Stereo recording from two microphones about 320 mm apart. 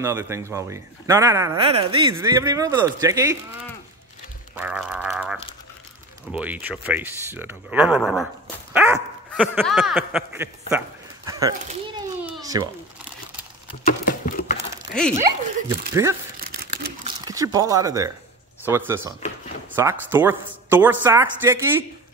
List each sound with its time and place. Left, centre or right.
0.0 s speech: centre
4.6 s speech: centre
11.2 s a sound: centre
13.8 s a sound: left
15.9 s speech: centre
16.3 s camera: right
18.7 s speech: centre